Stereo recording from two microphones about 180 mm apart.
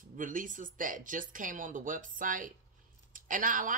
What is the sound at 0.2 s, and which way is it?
Speech, 45° right (ahead or behind).